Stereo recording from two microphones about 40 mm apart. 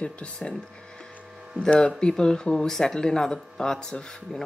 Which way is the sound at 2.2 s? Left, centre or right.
Left.